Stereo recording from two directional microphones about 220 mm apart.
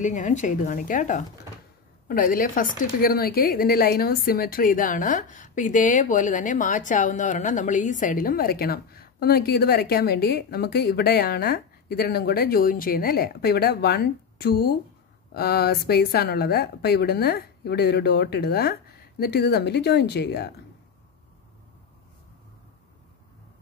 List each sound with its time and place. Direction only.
0.0 s a woman's voice: 35° left (ahead or behind)